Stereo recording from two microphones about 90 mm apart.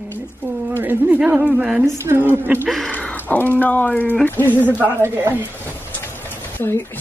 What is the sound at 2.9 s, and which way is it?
Speech, 15° left (ahead or behind).